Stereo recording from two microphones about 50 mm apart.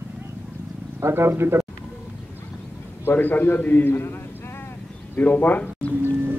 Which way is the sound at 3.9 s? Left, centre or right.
Left.